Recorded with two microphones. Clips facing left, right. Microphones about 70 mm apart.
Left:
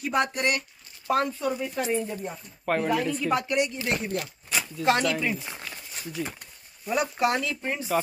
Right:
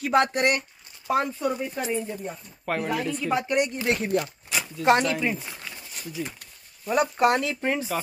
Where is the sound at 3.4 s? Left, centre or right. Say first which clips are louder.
Right 2 dB; right.